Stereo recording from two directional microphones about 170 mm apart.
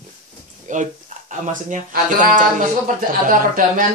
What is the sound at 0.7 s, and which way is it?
Speech, 45° right (ahead or behind).